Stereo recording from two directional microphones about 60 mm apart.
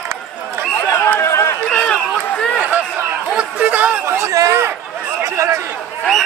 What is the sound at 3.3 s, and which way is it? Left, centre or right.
Chatter, right.